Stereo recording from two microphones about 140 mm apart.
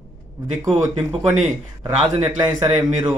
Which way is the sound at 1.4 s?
25° right (ahead or behind).